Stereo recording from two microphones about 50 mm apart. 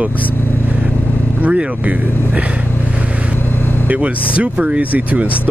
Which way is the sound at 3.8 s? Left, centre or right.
Right.